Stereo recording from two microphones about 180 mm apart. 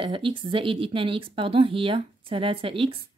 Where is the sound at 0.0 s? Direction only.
30° right (ahead or behind).